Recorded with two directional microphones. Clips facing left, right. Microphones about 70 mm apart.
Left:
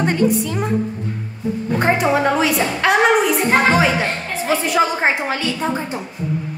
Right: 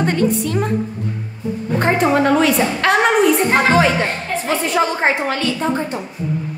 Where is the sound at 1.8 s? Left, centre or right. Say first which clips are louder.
Right 2 dB; centre.